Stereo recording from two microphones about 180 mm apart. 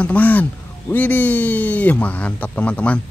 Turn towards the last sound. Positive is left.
turn(degrees=5)  # may be behind; listen again after turning